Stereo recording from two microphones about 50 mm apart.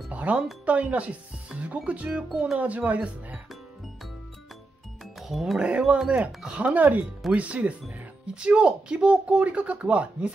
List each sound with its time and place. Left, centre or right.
0.1 s music: right
0.7 s speech: right
5.2 s speech: centre
5.6 s speech: right
6.6 s speech: right